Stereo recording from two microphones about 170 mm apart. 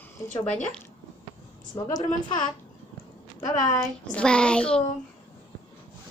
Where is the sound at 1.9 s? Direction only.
25° left (ahead or behind).